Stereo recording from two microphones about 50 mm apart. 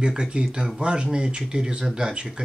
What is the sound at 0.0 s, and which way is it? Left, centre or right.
Speech, centre.